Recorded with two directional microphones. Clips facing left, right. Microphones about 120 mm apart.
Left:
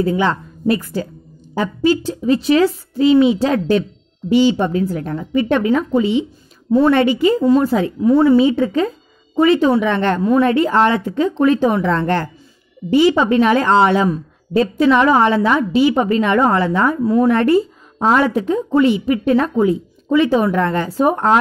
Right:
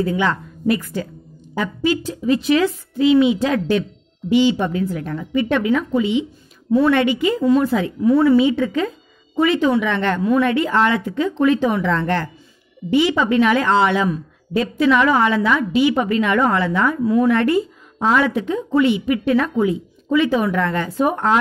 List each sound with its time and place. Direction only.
0.0 s a woman's voice: 30° left (ahead or behind)